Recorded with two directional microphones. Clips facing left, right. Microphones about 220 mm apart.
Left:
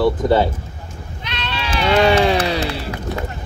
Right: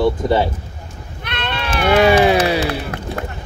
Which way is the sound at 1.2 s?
55° right (ahead or behind).